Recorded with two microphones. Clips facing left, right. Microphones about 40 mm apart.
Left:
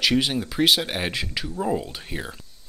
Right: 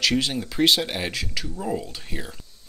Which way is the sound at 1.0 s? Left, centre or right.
Left.